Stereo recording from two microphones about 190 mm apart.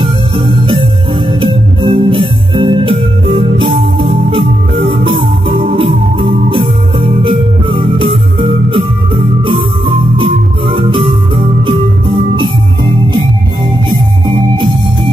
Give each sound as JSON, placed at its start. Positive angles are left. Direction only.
{"t": 0.0, "sound": "music", "side_deg": -25}
{"t": 1.4, "sound": "organ", "side_deg": -30}